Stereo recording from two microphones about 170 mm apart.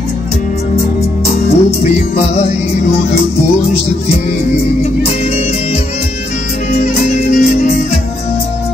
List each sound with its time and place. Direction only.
1.2 s music: 40° left (ahead or behind)
6.8 s music: 40° left (ahead or behind)